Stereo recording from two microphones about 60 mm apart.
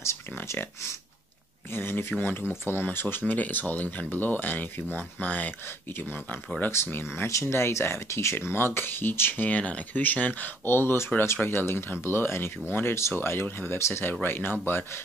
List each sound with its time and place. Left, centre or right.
0.0 s a sound: left
1.7 s speech: left
7.2 s speech: left
8.4 s speech: left
9.4 s speech: left
10.7 s speech: left
14.2 s speech: left